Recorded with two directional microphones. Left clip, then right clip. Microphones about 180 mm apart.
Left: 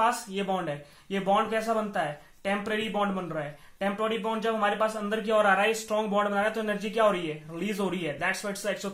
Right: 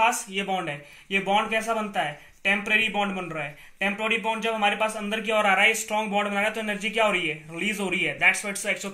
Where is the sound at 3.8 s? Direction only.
50° left (ahead or behind).